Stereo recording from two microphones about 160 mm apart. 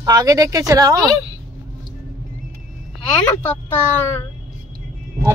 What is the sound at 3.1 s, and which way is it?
Speech, 10° left (ahead or behind).